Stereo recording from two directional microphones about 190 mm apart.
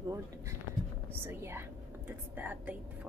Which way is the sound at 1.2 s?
10° right (ahead or behind).